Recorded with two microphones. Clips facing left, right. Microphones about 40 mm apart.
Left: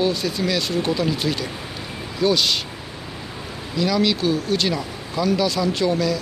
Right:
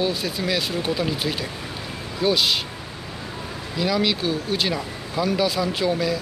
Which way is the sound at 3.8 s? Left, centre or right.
Centre.